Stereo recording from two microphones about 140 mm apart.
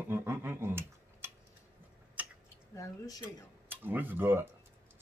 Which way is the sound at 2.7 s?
20° left (ahead or behind).